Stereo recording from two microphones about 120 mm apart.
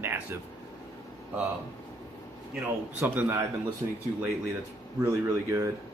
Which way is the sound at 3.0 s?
15° right (ahead or behind).